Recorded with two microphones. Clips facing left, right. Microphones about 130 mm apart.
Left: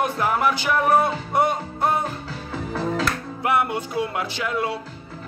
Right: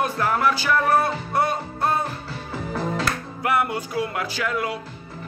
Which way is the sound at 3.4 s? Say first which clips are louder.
Left 1 dB; 25° left (ahead or behind).